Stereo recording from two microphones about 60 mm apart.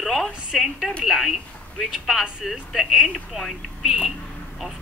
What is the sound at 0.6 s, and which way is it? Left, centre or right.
Speech, centre.